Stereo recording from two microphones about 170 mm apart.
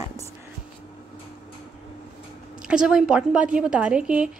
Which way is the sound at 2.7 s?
5° right (ahead or behind).